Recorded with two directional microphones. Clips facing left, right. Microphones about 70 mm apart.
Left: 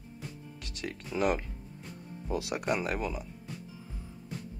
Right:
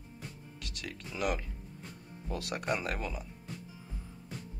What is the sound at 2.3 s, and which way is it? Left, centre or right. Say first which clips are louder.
Speech: left 3 dB; centre.